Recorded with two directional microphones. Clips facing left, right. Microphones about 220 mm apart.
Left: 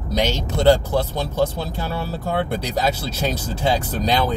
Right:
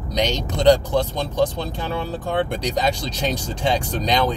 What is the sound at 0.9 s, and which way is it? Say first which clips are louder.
Speech: right 1 dB; 5° left (ahead or behind).